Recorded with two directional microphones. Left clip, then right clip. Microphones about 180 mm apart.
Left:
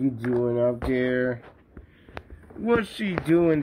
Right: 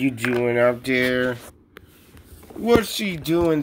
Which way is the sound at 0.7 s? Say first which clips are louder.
Right 4 dB; centre (ahead or behind).